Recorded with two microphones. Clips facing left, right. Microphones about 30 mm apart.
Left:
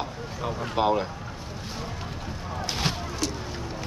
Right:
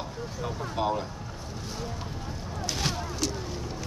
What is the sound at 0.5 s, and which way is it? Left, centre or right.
Speech, left.